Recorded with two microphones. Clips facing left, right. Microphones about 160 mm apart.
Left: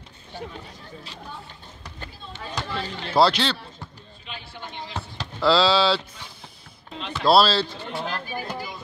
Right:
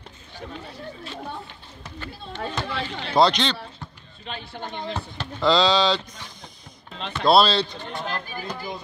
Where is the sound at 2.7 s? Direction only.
45° left (ahead or behind).